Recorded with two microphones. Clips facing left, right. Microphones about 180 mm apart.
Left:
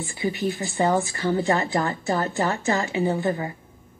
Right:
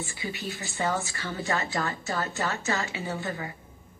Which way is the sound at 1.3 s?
30° left (ahead or behind).